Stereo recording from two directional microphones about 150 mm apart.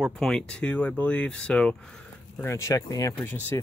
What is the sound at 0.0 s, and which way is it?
Speech, 5° left (ahead or behind).